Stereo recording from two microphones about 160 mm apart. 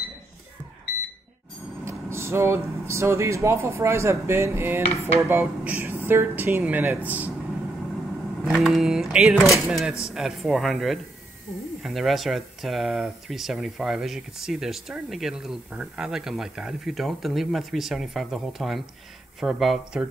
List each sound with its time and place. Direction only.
1.9 s speech: 15° right (ahead or behind)
8.5 s speech: centre (ahead or behind)